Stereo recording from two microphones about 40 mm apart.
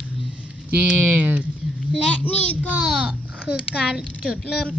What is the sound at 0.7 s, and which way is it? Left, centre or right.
Speech, right.